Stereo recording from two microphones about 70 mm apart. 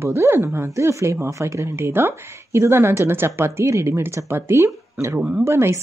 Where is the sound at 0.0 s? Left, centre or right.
Right.